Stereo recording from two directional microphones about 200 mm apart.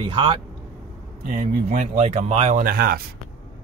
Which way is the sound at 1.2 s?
45° right (ahead or behind).